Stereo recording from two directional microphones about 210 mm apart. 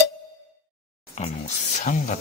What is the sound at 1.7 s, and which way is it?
Speech, 35° left (ahead or behind).